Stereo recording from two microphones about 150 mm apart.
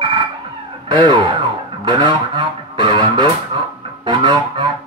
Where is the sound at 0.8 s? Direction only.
30° right (ahead or behind).